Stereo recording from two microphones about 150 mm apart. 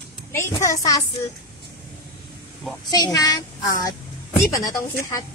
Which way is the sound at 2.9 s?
25° left (ahead or behind).